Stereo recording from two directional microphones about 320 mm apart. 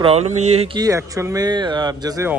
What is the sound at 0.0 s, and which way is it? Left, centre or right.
Speech, centre.